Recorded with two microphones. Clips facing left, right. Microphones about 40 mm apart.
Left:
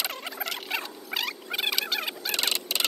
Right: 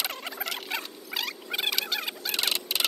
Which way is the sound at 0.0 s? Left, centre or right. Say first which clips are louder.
Even; centre.